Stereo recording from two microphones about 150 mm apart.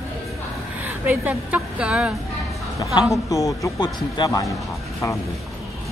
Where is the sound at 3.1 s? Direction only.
20° left (ahead or behind).